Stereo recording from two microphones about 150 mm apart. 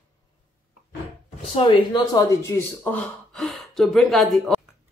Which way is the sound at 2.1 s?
20° left (ahead or behind).